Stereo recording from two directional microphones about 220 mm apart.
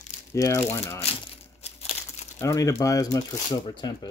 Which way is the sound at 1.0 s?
30° left (ahead or behind).